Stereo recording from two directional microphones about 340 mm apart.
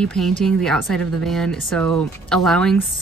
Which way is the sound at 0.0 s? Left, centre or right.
Centre.